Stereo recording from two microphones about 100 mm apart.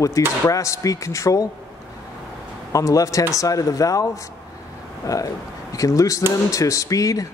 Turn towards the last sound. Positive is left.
turn(degrees=35)  # may be behind; listen again after turning